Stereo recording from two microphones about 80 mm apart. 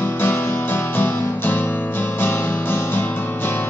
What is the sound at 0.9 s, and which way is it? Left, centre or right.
Music, left.